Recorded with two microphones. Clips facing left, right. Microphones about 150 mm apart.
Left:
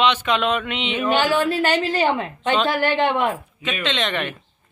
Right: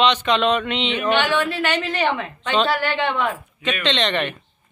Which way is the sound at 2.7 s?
45° left (ahead or behind).